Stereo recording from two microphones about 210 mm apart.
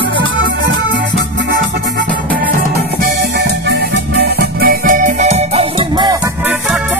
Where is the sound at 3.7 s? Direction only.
50° right (ahead or behind); by 6.1 s 30° right (ahead or behind).